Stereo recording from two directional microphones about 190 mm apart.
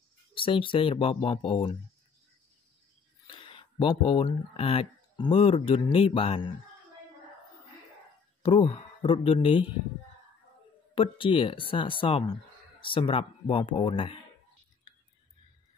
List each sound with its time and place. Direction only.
0.3 s speech: 25° left (ahead or behind)
3.3 s a sound: 25° left (ahead or behind)
4.3 s speech: 30° left (ahead or behind)
8.4 s speech: 30° left (ahead or behind)
11.0 s speech: 30° left (ahead or behind)